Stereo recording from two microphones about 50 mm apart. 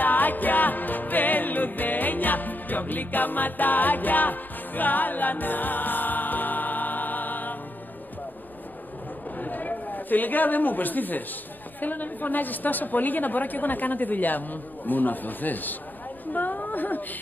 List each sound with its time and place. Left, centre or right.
0.0 s music: left
9.4 s a man's voice: left